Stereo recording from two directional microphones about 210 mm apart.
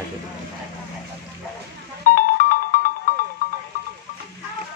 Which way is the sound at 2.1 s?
40° left (ahead or behind).